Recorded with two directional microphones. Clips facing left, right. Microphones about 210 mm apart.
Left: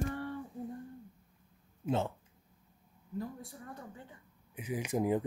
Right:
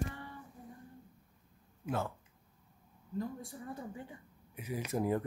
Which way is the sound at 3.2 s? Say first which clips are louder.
Right 2 dB; centre (ahead or behind).